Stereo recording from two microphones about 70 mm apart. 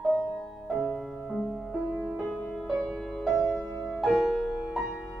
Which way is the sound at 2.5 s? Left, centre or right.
Centre.